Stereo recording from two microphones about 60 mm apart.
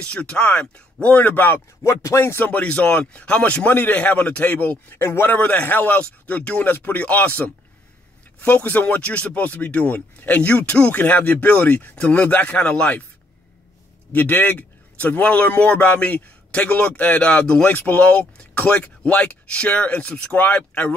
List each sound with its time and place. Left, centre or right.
0.0 s a man's voice: centre
1.8 s speech: left
2.4 s a man's voice: left
4.8 s a man's voice: left
14.1 s a man's voice: left